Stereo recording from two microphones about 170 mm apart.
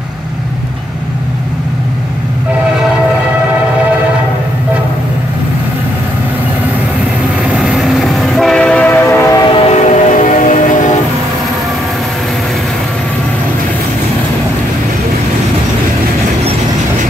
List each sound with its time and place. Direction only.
7.5 s train: centre (ahead or behind); by 9.4 s 15° left (ahead or behind)
9.5 s train: 35° left (ahead or behind)